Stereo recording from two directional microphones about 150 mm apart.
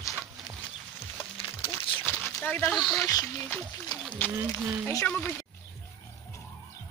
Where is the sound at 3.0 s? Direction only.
20° left (ahead or behind).